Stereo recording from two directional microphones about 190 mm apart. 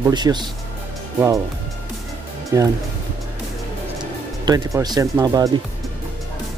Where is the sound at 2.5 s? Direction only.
15° right (ahead or behind).